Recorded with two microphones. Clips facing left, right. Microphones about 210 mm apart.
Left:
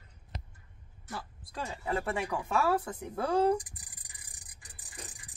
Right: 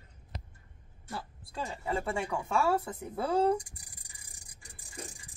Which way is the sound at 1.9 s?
5° left (ahead or behind).